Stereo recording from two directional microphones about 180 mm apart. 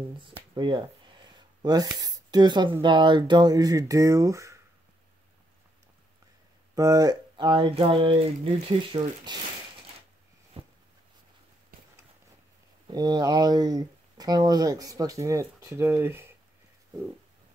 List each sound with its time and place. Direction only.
0.2 s speech: 25° right (ahead or behind)
6.7 s speech: 20° right (ahead or behind)
10.6 s a sound: 30° right (ahead or behind)
11.7 s clip-clop: 50° right (ahead or behind)
12.8 s speech: 25° right (ahead or behind)